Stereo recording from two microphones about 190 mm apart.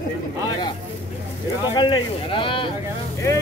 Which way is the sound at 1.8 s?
25° left (ahead or behind).